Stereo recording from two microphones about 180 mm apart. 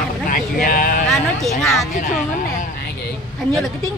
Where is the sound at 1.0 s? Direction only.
Centre (ahead or behind).